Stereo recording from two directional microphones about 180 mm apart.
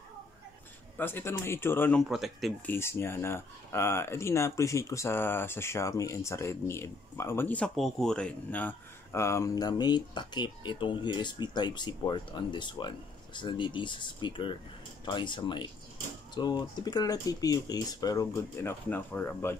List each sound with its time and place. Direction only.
0.9 s speech: 10° left (ahead or behind)
2.6 s speech: 10° left (ahead or behind)